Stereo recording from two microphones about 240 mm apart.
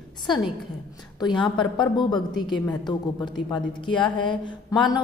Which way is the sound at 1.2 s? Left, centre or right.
Centre.